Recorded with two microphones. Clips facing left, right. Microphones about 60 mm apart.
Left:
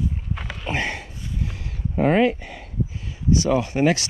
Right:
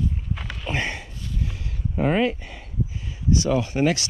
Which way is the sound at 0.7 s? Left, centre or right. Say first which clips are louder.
Left 1 dB; left.